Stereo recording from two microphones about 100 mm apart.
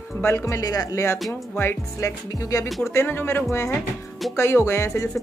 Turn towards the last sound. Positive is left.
turn(degrees=30)  # may be behind; listen again after turning